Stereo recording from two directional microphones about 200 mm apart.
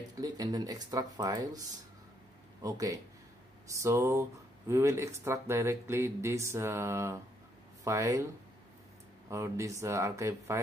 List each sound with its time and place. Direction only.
0.2 s speech: 20° right (ahead or behind)
2.6 s speech: 15° right (ahead or behind)
9.3 s speech: 15° right (ahead or behind)